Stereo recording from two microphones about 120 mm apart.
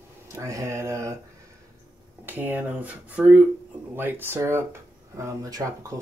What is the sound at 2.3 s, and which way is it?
Speech, 15° right (ahead or behind).